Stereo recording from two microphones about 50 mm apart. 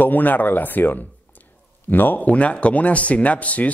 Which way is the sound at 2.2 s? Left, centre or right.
Left.